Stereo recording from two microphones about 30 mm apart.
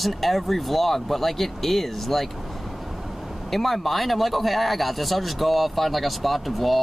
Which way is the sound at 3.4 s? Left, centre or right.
Centre.